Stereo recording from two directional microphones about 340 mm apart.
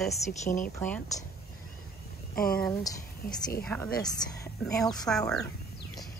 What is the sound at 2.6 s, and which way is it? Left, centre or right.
A woman's voice, centre.